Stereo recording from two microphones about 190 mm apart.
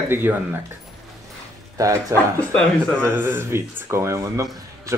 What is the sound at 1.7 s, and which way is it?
Speech, 15° right (ahead or behind).